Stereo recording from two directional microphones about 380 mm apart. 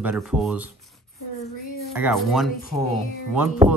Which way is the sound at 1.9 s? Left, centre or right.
Centre.